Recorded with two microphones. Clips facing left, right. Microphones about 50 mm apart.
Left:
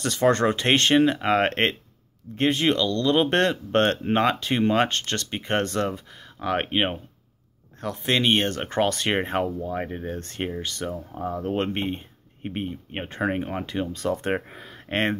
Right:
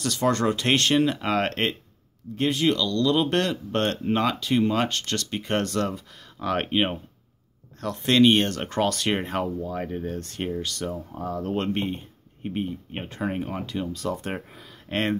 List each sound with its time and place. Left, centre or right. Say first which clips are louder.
0.0 s speech: left 3 dB; left